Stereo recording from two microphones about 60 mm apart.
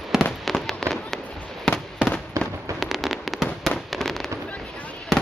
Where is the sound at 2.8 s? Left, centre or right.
Centre.